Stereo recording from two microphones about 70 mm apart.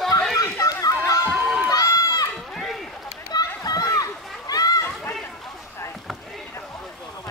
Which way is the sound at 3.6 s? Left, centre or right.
Left.